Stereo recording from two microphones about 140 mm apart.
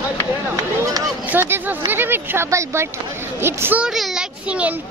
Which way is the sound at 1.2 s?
15° right (ahead or behind).